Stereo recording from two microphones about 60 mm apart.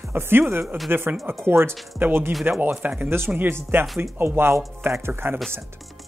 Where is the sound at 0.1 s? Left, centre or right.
Right.